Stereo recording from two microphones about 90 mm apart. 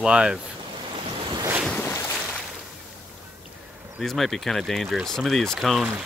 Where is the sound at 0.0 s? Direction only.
10° right (ahead or behind).